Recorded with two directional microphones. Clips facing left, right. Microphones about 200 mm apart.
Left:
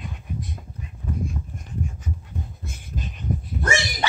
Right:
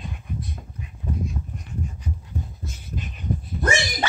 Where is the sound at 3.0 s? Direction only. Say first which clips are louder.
Left 1 dB; 45° left (ahead or behind).